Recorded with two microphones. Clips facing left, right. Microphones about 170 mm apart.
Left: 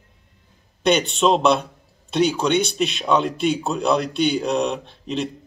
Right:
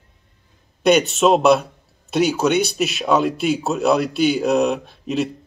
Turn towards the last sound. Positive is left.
turn(degrees=-5)  # may be behind; listen again after turning